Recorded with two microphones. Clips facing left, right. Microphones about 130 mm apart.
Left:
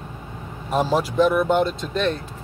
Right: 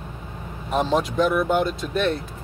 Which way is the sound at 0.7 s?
Centre (ahead or behind).